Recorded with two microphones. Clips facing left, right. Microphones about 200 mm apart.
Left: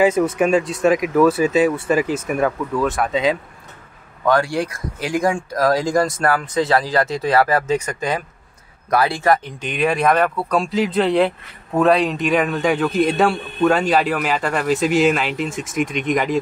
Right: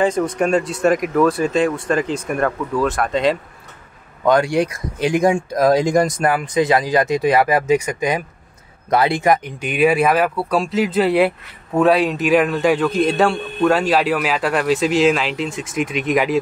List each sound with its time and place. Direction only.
0.0 s speech: 5° left (ahead or behind)
4.2 s speech: 20° right (ahead or behind)